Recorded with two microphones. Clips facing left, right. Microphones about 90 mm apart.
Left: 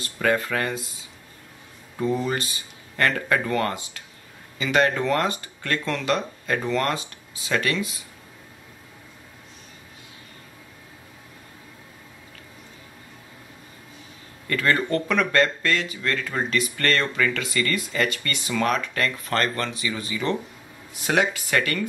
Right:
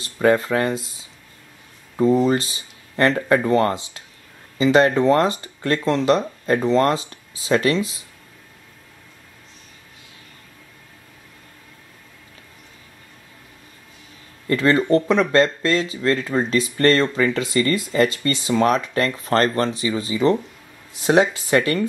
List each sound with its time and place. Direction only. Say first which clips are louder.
0.0 s speech: right 6 dB; 30° right (ahead or behind)
2.0 s speech: right 8 dB; 25° right (ahead or behind)
14.5 s speech: right 6 dB; 25° right (ahead or behind)